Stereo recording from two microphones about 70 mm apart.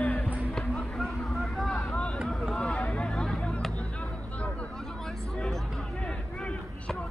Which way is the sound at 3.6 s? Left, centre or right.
Centre.